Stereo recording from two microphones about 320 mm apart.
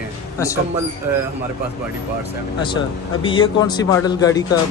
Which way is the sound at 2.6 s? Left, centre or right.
Centre.